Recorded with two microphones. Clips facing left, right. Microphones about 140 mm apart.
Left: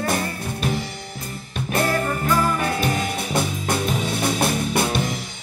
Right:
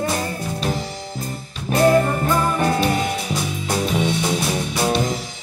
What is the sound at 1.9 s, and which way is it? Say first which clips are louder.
Music: right 4 dB; 20° right (ahead or behind).